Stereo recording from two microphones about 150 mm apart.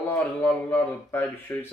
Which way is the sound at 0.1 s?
15° left (ahead or behind).